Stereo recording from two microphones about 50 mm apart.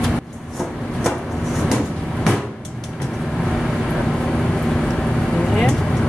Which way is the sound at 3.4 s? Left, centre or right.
Centre.